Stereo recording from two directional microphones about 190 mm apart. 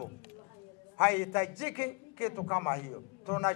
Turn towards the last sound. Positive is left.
turn(degrees=15)  # may be behind; listen again after turning